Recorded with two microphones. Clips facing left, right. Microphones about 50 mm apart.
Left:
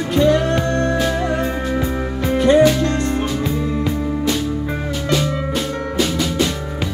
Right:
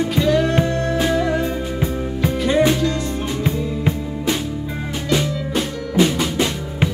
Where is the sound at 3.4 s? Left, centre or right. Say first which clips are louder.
Left 1 dB; right.